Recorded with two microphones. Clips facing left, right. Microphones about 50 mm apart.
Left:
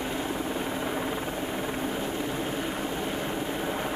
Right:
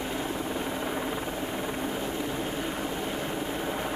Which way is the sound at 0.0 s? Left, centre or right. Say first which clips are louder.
Left 1 dB; centre.